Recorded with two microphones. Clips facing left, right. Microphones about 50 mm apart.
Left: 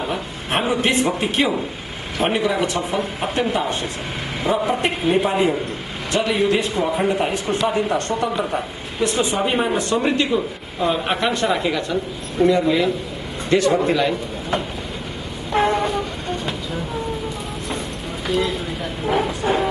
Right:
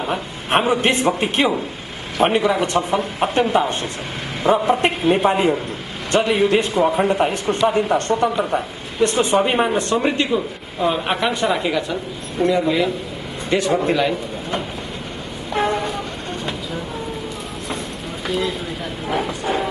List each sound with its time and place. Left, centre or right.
0.0 s a sound: centre
0.7 s a man's voice: right
2.2 s a man's voice: centre
15.5 s vehicle: centre
18.2 s a sound: centre
19.0 s speech: centre